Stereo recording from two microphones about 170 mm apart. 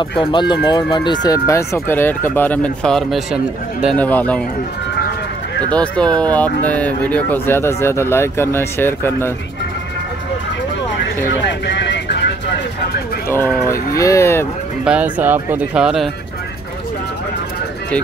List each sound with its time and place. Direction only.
0.3 s speech: 25° left (ahead or behind); by 4.4 s 10° left (ahead or behind)
5.7 s speech: 5° left (ahead or behind)
6.0 s speech: 25° right (ahead or behind)
6.6 s speech: 10° left (ahead or behind)
11.6 s vehicle: 90° left
13.9 s speech: 20° left (ahead or behind)
14.9 s speech: 10° right (ahead or behind)